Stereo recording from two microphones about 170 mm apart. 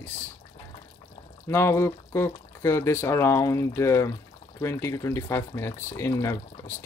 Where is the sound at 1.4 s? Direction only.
15° left (ahead or behind).